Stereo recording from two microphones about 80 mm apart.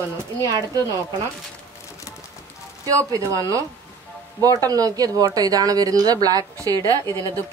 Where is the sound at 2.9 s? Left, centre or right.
Right.